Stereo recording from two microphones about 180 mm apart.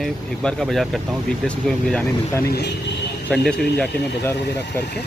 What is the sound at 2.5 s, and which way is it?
Speech, 65° left (ahead or behind).